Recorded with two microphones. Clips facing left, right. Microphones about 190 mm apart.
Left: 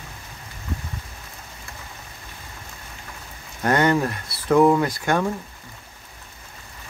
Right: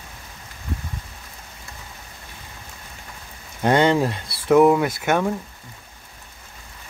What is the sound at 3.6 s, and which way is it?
Speech, 20° right (ahead or behind).